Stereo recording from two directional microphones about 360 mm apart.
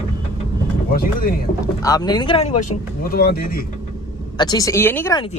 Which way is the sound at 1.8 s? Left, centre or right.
Centre.